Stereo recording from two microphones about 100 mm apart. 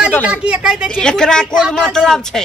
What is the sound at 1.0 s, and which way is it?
Speech, 10° left (ahead or behind).